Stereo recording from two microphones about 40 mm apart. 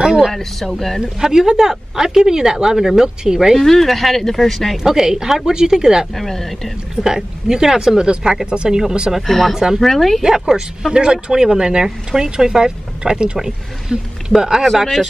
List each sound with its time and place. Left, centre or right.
0.0 s a sound: centre
0.3 s speech: centre
1.2 s speech: centre
3.5 s speech: centre
4.8 s speech: centre
6.1 s speech: centre
7.0 s speech: centre
9.2 s speech: centre
10.2 s speech: centre
14.8 s speech: centre